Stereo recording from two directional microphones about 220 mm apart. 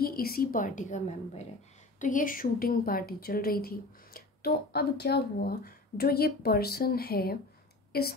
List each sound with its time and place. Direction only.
0.0 s a woman's voice: 45° left (ahead or behind)